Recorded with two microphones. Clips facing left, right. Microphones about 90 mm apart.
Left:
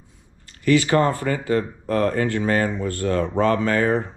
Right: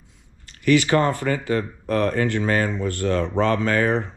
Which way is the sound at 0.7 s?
25° left (ahead or behind).